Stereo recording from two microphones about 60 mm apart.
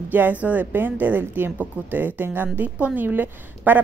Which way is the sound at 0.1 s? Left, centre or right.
Right.